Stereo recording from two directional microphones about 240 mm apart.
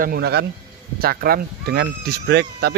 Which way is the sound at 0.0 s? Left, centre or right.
Right.